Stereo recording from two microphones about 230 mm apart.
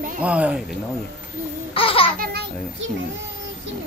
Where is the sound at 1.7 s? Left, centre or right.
Left.